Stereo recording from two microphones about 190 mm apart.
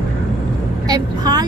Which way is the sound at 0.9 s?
20° right (ahead or behind).